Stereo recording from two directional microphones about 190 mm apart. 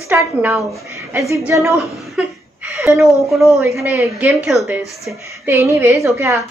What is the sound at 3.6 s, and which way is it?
A woman's voice, 15° right (ahead or behind).